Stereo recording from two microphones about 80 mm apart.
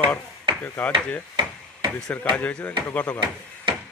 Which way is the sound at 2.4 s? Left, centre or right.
Centre.